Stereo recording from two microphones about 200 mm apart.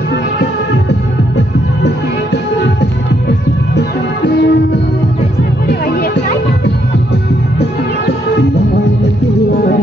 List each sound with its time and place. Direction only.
2.3 s music: 55° left (ahead or behind)